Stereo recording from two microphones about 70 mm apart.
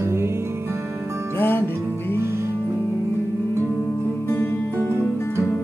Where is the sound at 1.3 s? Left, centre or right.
Left.